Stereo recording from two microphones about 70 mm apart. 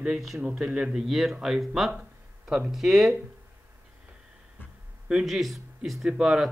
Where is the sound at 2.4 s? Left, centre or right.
Right.